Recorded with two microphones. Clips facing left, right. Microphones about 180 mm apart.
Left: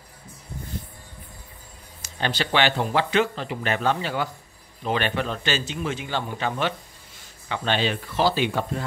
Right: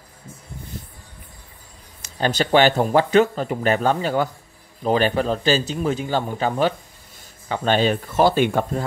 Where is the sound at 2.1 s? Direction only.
40° right (ahead or behind).